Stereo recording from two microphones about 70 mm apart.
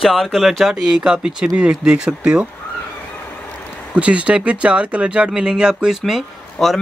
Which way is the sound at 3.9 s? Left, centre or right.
Centre.